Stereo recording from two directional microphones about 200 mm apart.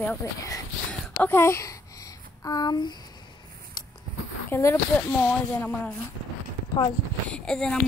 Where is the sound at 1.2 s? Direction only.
10° left (ahead or behind).